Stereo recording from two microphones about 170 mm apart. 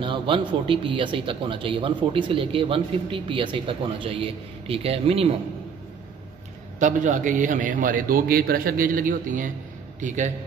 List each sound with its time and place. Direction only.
0.0 s a man's voice: 30° right (ahead or behind)
6.8 s a man's voice: 45° right (ahead or behind)